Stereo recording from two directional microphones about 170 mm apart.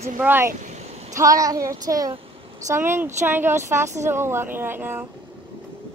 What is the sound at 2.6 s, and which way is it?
A woman's voice, 15° right (ahead or behind).